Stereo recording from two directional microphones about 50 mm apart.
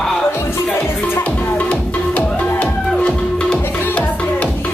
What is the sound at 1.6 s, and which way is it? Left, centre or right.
Music, left.